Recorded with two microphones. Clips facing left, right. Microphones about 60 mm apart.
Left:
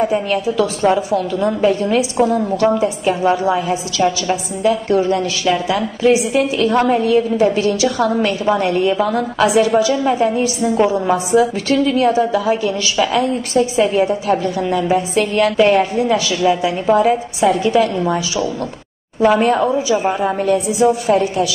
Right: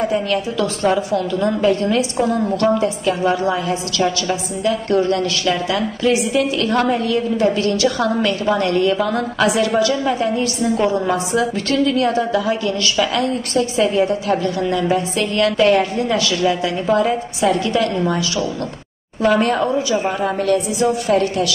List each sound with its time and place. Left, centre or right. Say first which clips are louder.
0.0 s a woman's voice: left 2 dB; centre
11.3 s a woman's voice: left 5 dB; left